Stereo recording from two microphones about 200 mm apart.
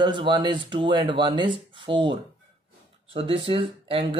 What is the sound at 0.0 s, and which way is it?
Speech, 25° right (ahead or behind).